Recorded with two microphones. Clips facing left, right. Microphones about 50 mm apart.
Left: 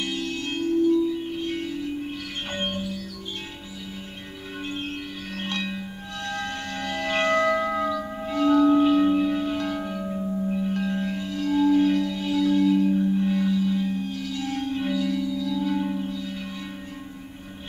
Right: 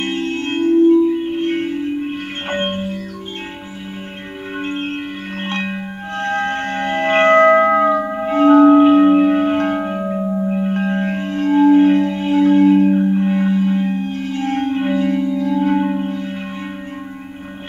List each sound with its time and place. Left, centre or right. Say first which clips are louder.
0.0 s music: right 8 dB; right
4.6 s music: right 8 dB; right